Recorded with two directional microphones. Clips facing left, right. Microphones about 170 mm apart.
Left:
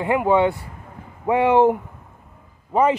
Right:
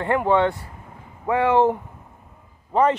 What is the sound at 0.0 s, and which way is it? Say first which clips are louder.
Speech: left 2 dB; 10° left (ahead or behind).